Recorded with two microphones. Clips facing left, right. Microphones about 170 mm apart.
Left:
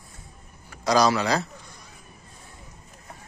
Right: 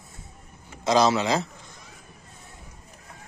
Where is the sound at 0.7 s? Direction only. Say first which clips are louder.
Even; 25° right (ahead or behind).